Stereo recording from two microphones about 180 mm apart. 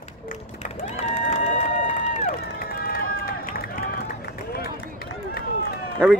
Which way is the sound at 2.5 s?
55° left (ahead or behind).